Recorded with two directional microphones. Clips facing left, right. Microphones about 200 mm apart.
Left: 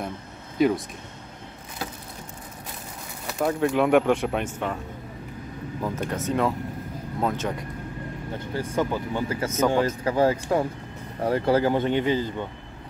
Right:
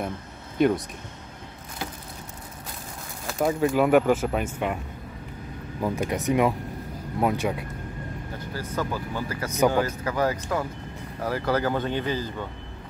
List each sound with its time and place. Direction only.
0.6 s speech: centre (ahead or behind)
3.3 s speech: centre (ahead or behind)
5.8 s speech: 10° right (ahead or behind)
8.5 s speech: 20° left (ahead or behind)